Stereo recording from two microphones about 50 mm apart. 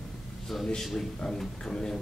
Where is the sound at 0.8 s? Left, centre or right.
Centre.